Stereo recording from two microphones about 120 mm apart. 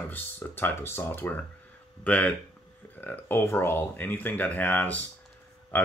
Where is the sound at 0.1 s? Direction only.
15° left (ahead or behind).